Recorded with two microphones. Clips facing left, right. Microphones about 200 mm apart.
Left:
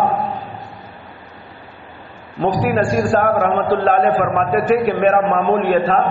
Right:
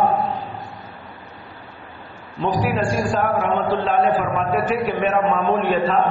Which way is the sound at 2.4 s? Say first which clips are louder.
Left 4 dB; 50° left (ahead or behind).